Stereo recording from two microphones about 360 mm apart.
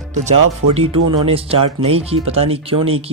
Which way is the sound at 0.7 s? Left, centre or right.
Centre.